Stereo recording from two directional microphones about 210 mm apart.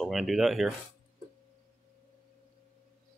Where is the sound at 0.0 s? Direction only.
Centre (ahead or behind).